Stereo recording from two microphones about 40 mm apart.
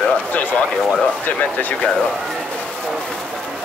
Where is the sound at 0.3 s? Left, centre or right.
Left.